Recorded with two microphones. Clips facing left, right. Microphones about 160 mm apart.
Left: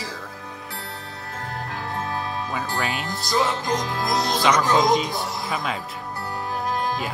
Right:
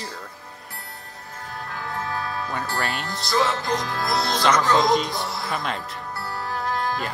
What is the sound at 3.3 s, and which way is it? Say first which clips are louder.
Music: even; 15° left (ahead or behind).